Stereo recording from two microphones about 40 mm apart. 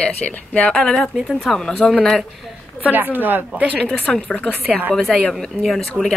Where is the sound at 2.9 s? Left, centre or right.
Right.